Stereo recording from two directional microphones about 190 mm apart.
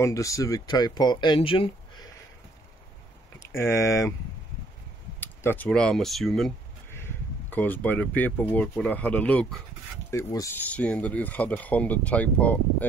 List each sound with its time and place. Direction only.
0.0 s speech: 15° left (ahead or behind)
3.3 s speech: 15° left (ahead or behind)
5.2 s speech: 10° left (ahead or behind)
6.9 s speech: 10° left (ahead or behind)